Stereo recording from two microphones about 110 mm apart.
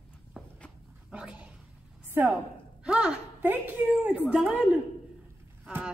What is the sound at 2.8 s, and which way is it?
A woman's voice, 10° right (ahead or behind).